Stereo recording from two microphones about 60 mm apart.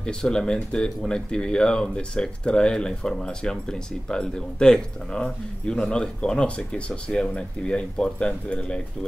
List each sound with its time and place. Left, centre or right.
0.0 s speech: centre